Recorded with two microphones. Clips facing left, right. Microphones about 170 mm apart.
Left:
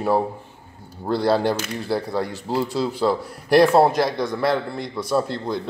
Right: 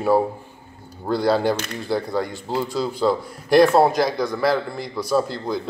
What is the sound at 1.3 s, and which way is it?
Speech, centre (ahead or behind).